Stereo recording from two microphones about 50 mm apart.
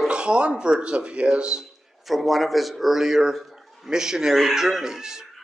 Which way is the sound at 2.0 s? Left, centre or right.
Centre.